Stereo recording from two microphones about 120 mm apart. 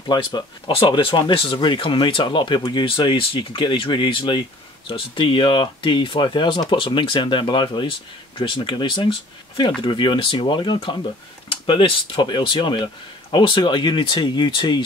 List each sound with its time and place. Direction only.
0.1 s speech: 40° left (ahead or behind)